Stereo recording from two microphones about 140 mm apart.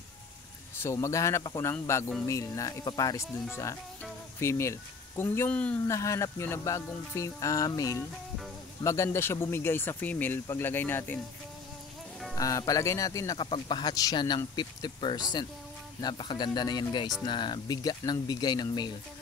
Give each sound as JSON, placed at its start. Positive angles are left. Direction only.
{"t": 0.7, "sound": "speech", "side_deg": 20}
{"t": 4.4, "sound": "speech", "side_deg": 20}
{"t": 5.9, "sound": "speech", "side_deg": 20}
{"t": 12.4, "sound": "speech", "side_deg": 25}
{"t": 13.4, "sound": "speech", "side_deg": 35}